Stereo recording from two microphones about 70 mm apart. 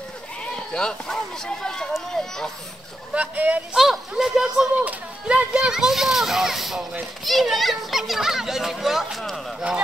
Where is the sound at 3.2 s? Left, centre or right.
Right.